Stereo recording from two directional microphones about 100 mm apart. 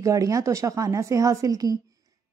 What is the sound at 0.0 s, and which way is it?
Speech, 35° right (ahead or behind).